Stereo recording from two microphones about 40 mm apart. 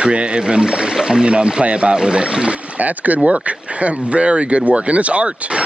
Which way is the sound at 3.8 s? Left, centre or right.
Right.